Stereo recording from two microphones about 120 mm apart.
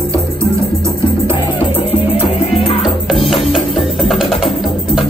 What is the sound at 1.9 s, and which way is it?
Music, 50° left (ahead or behind).